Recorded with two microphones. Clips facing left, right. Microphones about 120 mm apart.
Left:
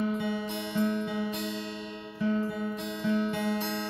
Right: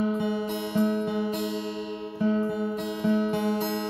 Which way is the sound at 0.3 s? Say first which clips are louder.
Right 4 dB; 20° right (ahead or behind).